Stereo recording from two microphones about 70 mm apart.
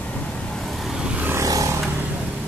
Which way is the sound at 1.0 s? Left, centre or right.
Centre.